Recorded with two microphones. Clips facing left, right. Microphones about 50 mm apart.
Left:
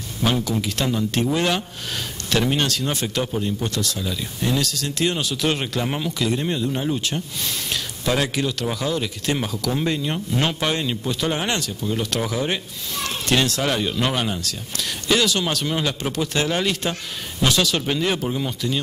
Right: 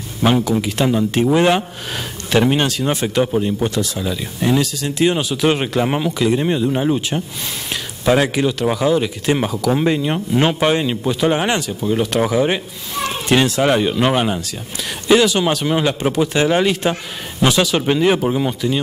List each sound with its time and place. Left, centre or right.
0.2 s speech: centre